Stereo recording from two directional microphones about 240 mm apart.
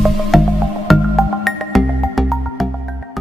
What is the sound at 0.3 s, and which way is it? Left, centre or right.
Music, centre.